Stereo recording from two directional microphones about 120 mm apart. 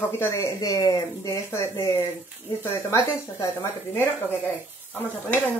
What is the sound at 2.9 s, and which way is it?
Speech, 20° left (ahead or behind).